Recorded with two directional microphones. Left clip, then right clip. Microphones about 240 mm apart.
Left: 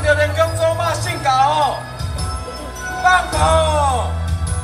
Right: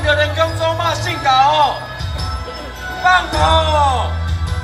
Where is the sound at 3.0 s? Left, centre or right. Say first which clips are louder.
Right 1 dB; left.